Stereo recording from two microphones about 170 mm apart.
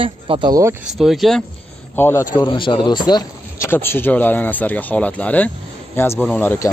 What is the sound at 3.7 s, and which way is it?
Speech, 15° left (ahead or behind).